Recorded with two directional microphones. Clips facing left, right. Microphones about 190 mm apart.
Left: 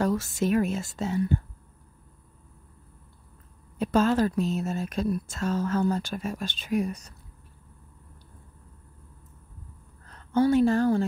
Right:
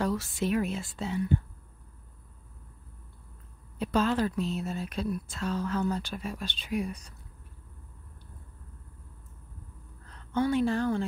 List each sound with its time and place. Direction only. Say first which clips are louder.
0.0 s speech: left 4 dB; 45° left (ahead or behind)
3.7 s speech: left 4 dB; 45° left (ahead or behind)
10.0 s a woman's voice: left 5 dB; 40° left (ahead or behind)